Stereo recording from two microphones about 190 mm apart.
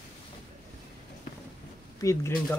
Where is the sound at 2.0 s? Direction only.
15° left (ahead or behind).